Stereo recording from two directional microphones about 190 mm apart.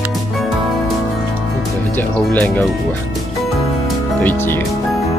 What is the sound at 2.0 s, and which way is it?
Speech, 10° left (ahead or behind).